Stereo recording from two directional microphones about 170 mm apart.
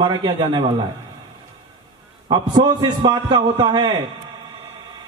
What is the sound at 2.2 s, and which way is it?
A man's voice, 25° right (ahead or behind).